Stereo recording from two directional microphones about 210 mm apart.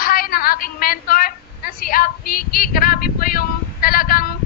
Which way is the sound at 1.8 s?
45° left (ahead or behind).